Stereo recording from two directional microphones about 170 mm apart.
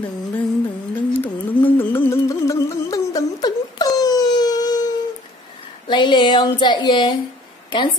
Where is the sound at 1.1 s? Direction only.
10° left (ahead or behind).